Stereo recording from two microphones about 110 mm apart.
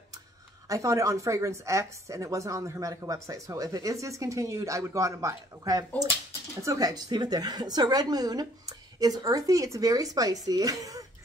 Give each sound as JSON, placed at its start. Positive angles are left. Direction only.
{"t": 0.7, "sound": "a woman's voice", "side_deg": -30}